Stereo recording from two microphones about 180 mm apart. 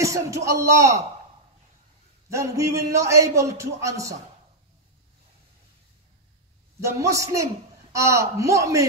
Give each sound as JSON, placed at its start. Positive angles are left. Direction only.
{"t": 0.0, "sound": "a man's voice", "side_deg": -15}
{"t": 2.2, "sound": "a man's voice", "side_deg": -15}
{"t": 6.8, "sound": "a man's voice", "side_deg": -15}